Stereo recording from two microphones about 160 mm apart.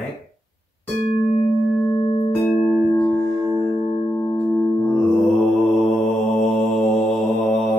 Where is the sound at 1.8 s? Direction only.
25° left (ahead or behind).